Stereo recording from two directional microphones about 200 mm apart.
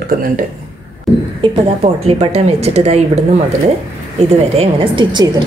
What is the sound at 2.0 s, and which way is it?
A woman's voice, 30° right (ahead or behind).